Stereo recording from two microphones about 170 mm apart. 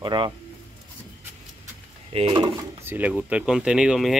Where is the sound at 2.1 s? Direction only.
35° right (ahead or behind).